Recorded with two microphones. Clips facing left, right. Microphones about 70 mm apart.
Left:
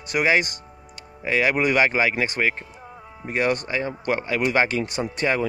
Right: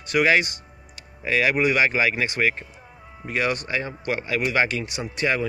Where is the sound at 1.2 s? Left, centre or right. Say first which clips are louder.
Even; left.